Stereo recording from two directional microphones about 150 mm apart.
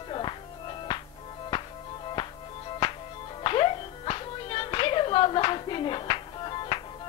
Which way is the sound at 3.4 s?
35° left (ahead or behind).